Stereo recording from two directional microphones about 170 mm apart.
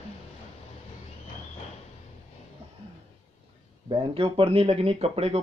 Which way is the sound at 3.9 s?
30° right (ahead or behind).